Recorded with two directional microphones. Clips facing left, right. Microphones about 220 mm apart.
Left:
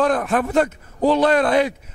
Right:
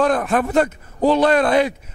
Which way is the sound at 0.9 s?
30° right (ahead or behind).